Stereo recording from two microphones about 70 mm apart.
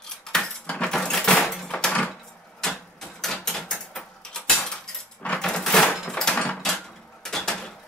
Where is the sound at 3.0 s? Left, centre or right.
Centre.